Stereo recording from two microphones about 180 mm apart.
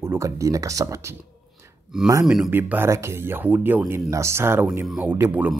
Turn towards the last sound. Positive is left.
turn(degrees=-10)  # may be behind; listen again after turning